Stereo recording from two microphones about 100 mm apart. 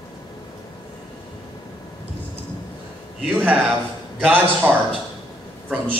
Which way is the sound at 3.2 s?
15° right (ahead or behind).